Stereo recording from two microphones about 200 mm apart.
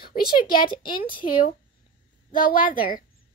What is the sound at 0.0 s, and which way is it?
Speech, 50° left (ahead or behind).